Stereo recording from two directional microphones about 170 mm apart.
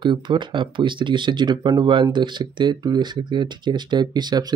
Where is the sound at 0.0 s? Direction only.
30° right (ahead or behind).